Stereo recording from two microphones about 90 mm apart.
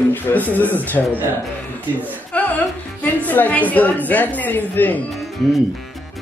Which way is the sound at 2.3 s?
15° left (ahead or behind).